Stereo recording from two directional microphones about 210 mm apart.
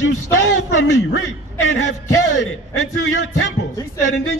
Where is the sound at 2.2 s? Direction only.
90° left.